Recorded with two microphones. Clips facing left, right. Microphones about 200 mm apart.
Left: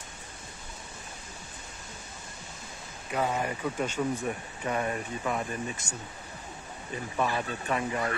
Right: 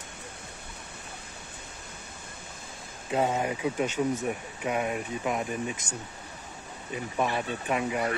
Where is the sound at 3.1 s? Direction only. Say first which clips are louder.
Right 3 dB; 25° right (ahead or behind).